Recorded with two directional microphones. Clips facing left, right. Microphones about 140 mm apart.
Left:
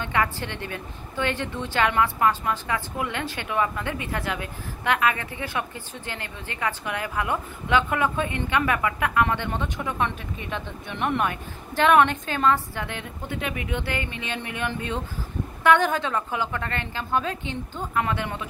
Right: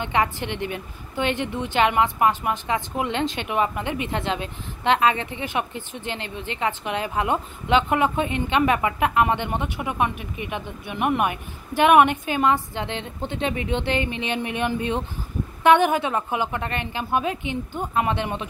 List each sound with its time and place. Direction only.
0.0 s a woman's voice: 20° right (ahead or behind)